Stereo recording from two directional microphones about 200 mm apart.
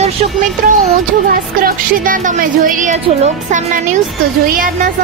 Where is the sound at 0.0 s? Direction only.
40° right (ahead or behind).